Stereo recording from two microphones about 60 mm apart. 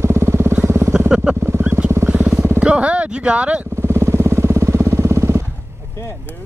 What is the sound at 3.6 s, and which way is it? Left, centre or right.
Vehicle, right.